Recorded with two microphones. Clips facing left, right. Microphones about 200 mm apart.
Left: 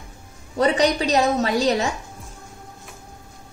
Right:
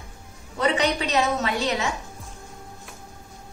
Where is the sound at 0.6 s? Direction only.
35° left (ahead or behind).